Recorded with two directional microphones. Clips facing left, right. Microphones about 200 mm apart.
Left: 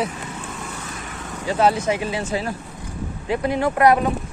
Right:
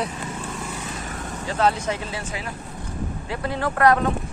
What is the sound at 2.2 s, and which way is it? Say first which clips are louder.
Speech: left 7 dB; 25° left (ahead or behind).